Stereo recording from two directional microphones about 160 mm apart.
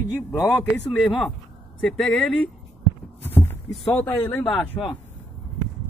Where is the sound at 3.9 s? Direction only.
10° left (ahead or behind).